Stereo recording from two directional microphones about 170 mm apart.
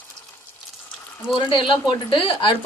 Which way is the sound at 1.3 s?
30° left (ahead or behind).